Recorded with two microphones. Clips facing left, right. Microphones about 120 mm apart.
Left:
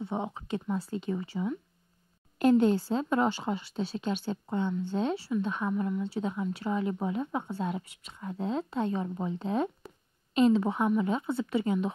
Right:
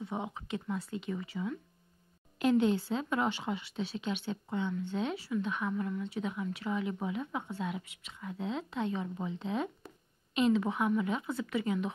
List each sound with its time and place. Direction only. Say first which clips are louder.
0.0 s speech: left 4 dB; 30° left (ahead or behind)
2.3 s speech: left 4 dB; 45° left (ahead or behind)
5.7 s speech: left 4 dB; 20° left (ahead or behind)